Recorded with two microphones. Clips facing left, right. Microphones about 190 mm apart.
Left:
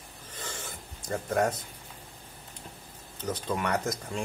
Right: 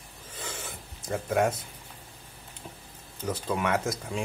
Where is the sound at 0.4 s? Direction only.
Centre (ahead or behind).